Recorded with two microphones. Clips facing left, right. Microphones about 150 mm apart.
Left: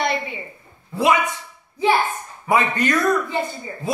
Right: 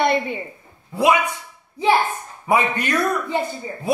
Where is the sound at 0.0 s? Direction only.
55° right (ahead or behind).